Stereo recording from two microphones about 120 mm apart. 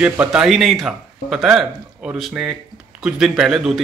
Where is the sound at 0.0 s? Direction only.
10° right (ahead or behind).